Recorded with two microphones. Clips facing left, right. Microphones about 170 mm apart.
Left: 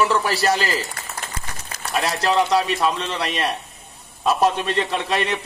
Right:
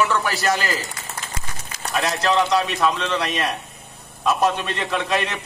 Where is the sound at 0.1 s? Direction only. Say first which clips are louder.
Left 2 dB; 35° left (ahead or behind).